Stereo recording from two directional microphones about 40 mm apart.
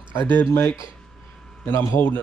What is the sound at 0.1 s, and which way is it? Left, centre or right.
Speech, left.